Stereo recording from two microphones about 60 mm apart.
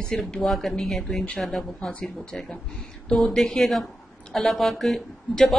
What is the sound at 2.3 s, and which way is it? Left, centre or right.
Speech, centre.